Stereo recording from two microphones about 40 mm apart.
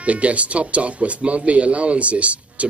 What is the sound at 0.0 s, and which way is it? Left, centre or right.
A man's voice, right.